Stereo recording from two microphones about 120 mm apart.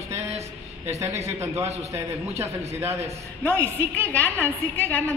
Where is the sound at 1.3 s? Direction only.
25° right (ahead or behind).